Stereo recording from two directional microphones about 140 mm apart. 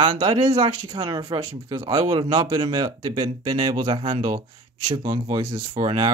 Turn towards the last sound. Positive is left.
turn(degrees=-30)  # may be behind; listen again after turning